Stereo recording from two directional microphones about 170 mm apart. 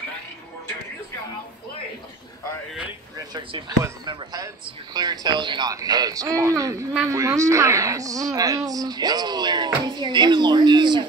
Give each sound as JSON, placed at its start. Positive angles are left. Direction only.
{"t": 3.2, "sound": "speech", "side_deg": -25}